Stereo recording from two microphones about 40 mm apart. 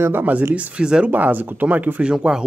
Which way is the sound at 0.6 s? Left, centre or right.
Right.